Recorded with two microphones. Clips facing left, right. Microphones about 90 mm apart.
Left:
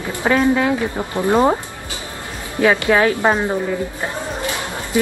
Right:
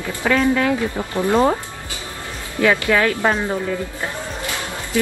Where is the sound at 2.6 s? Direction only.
20° left (ahead or behind).